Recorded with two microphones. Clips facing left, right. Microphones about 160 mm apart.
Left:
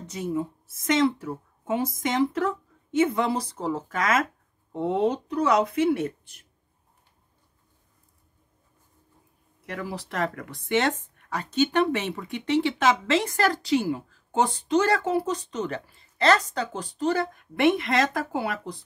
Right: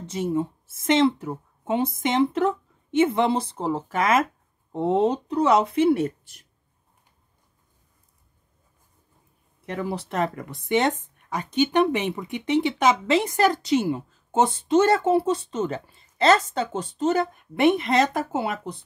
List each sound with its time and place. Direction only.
0.0 s speech: 25° right (ahead or behind)
9.7 s speech: 25° right (ahead or behind)